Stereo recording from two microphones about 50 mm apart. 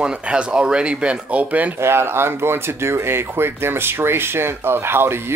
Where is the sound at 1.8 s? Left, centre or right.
Right.